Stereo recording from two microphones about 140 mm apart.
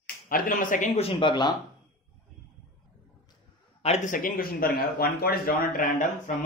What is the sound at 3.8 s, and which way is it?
Speech, 60° left (ahead or behind).